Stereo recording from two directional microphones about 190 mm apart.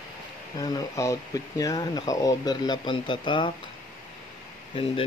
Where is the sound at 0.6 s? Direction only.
20° left (ahead or behind).